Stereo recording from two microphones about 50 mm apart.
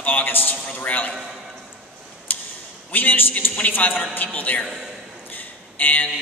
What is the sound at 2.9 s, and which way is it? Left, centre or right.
A man's voice, left.